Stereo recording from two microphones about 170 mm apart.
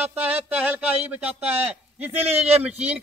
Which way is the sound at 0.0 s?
10° right (ahead or behind).